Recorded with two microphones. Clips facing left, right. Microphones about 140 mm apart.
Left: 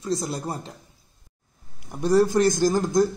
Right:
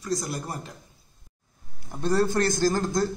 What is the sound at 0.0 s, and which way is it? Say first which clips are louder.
Speech: left 3 dB; 25° left (ahead or behind).